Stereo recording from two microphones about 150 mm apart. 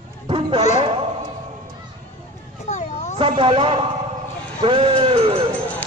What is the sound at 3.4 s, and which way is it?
A man's voice, 35° right (ahead or behind).